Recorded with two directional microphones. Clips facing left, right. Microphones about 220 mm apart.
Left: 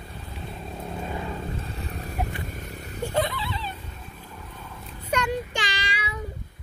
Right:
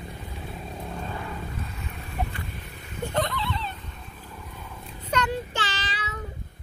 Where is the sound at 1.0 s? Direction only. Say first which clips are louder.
Left 3 dB; 20° left (ahead or behind); by 2.9 s 45° left (ahead or behind).